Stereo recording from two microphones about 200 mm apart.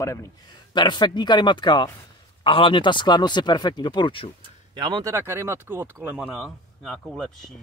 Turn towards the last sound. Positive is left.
turn(degrees=5)  # may be behind; listen again after turning